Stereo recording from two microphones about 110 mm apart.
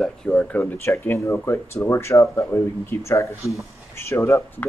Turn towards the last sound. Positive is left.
turn(degrees=25)  # may be behind; listen again after turning